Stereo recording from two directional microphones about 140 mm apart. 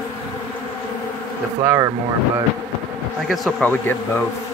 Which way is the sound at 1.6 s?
20° right (ahead or behind).